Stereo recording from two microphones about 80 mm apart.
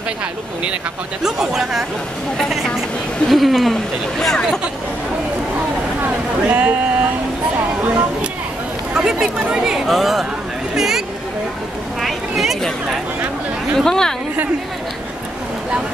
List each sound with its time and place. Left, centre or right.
1.2 s speech: centre
6.4 s speech: centre
8.9 s speech: centre
13.7 s speech: centre